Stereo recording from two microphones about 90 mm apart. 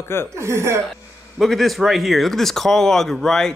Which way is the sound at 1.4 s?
Centre (ahead or behind).